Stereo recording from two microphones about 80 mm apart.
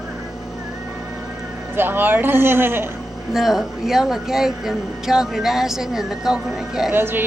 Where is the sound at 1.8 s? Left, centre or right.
Right.